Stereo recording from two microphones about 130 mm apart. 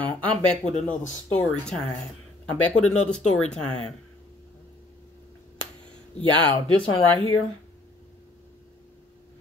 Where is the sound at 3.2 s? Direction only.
60° left (ahead or behind).